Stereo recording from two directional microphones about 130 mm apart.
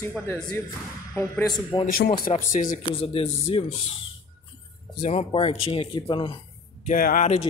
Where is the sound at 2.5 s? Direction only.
90° left.